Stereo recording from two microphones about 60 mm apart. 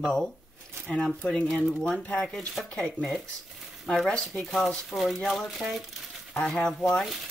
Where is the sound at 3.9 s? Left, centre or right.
Centre.